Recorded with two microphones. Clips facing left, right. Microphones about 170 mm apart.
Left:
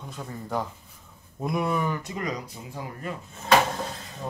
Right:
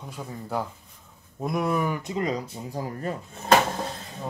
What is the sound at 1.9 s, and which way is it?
Speech, 20° right (ahead or behind).